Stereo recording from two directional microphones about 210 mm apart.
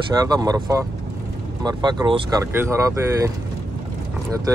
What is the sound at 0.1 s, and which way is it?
Speech, 15° right (ahead or behind).